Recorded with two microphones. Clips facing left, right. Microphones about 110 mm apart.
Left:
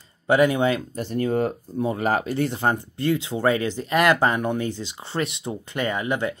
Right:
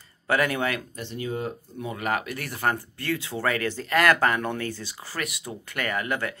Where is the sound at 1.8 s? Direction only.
35° left (ahead or behind).